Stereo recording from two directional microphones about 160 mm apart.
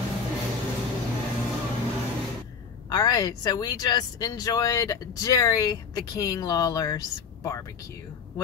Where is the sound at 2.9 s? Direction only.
25° left (ahead or behind).